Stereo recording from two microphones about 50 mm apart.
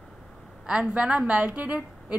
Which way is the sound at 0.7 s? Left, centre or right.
Centre.